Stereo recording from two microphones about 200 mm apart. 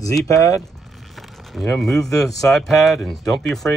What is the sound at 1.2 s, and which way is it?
Speech, centre (ahead or behind).